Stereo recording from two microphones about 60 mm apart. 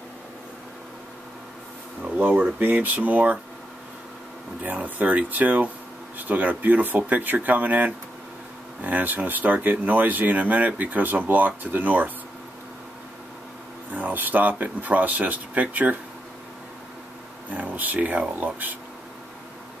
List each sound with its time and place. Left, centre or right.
2.1 s speech: right
4.6 s speech: right
13.9 s speech: right
17.5 s speech: right